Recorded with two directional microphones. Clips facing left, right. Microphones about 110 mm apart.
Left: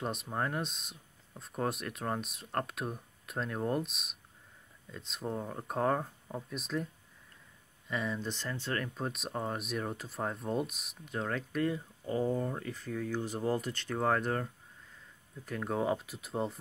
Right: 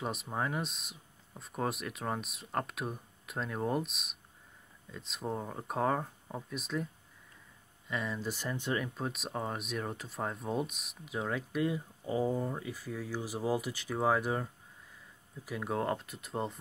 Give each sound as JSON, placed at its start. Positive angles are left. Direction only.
{"t": 0.0, "sound": "speech", "side_deg": 0}
{"t": 7.9, "sound": "speech", "side_deg": 0}